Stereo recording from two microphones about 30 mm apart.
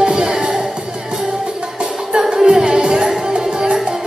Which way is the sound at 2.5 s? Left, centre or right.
Right.